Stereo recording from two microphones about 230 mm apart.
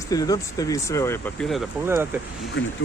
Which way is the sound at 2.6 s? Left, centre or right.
Left.